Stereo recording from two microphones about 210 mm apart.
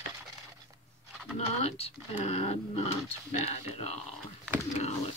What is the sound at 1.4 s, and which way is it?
Speech, 30° left (ahead or behind).